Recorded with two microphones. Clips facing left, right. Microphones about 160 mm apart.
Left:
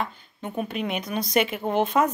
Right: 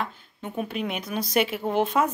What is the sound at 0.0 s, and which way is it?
A woman's voice, centre (ahead or behind).